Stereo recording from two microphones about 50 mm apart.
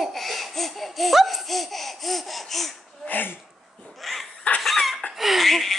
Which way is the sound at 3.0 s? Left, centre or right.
Left.